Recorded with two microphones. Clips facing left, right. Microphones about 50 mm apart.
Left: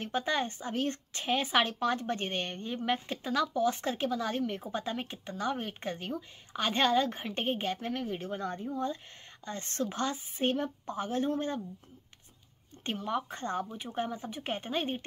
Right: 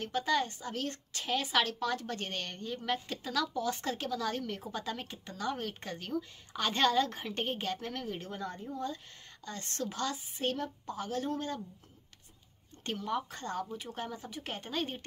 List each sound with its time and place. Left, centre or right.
0.0 s speech: left
8.4 s speech: left
12.8 s speech: left